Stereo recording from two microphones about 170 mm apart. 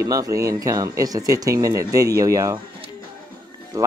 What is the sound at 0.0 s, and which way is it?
Speech, 20° right (ahead or behind).